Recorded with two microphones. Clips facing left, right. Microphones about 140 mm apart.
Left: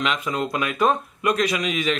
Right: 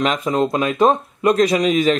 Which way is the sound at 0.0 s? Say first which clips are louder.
Right 6 dB; 40° right (ahead or behind).